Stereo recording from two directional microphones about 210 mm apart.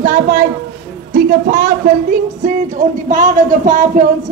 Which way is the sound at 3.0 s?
35° right (ahead or behind).